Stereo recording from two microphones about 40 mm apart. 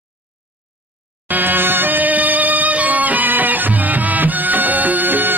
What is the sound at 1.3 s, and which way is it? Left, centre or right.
Music, right.